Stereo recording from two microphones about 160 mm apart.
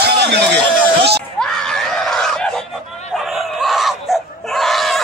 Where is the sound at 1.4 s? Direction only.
5° left (ahead or behind).